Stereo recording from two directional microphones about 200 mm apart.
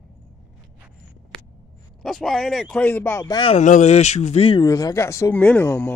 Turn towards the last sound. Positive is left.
turn(degrees=10)  # may be behind; listen again after turning